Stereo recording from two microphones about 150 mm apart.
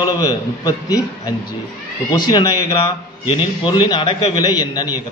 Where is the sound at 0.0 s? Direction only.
25° left (ahead or behind).